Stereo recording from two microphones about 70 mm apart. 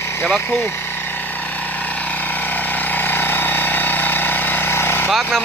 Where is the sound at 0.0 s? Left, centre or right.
Left.